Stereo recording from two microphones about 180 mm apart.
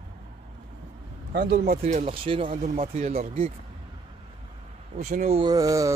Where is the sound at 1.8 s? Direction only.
35° right (ahead or behind).